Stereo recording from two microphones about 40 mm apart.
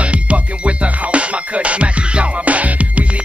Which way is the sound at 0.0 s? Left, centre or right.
Right.